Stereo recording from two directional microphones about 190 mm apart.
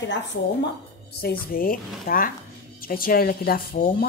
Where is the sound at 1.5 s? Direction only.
50° left (ahead or behind).